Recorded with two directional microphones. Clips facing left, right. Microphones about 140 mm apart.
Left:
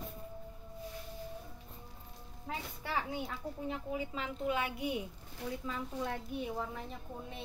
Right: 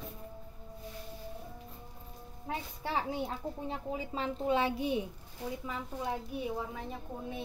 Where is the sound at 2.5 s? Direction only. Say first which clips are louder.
Right 3 dB; 25° right (ahead or behind).